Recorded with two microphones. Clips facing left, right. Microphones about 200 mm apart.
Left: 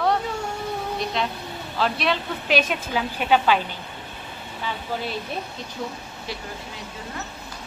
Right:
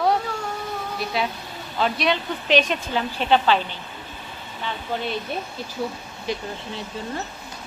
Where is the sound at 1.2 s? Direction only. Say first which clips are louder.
Right 1 dB; 5° right (ahead or behind).